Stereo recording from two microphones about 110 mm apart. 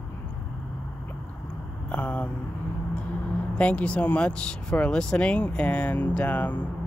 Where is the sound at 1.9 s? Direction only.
15° left (ahead or behind).